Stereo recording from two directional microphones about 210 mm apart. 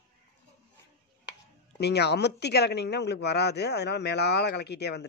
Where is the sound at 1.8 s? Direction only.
50° left (ahead or behind).